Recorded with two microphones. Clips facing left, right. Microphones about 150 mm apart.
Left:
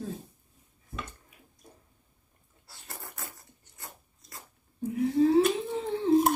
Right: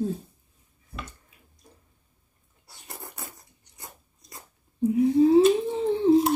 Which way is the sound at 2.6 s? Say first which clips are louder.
Right 3 dB; 20° right (ahead or behind).